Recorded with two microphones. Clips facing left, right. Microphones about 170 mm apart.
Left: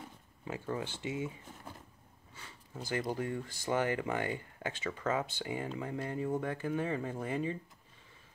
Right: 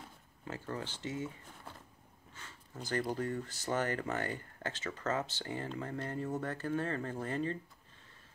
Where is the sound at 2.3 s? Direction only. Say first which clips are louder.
Left 2 dB; 10° left (ahead or behind).